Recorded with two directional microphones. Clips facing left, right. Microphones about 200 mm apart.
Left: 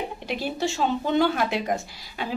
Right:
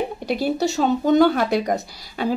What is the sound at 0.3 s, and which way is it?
Speech, 40° right (ahead or behind).